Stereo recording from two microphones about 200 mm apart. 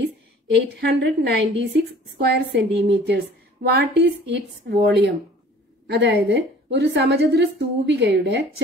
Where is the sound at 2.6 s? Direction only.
60° right (ahead or behind).